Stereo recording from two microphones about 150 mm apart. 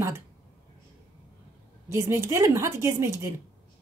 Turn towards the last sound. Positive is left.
turn(degrees=-20)  # may be behind; listen again after turning